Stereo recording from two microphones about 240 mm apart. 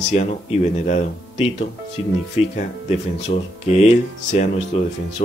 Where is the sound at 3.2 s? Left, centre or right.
Left.